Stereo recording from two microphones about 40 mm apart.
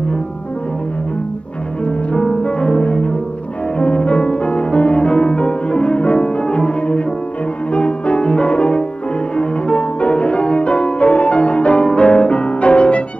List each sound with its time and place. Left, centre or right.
1.9 s music: left